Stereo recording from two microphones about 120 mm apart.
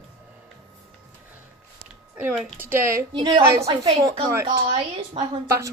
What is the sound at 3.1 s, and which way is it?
Speech, 40° right (ahead or behind).